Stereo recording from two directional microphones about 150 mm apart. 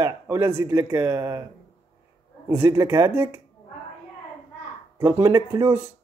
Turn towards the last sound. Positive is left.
turn(degrees=-20)  # may be behind; listen again after turning